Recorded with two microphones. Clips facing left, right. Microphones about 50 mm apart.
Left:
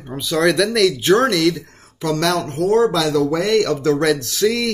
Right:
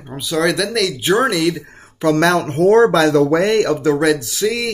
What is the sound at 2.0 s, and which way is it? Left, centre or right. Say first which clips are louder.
Speech: right 5 dB; right.